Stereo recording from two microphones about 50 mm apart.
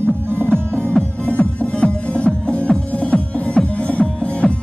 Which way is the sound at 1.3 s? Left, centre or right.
Left.